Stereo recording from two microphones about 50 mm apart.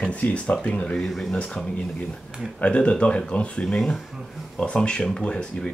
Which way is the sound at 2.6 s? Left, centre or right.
Left.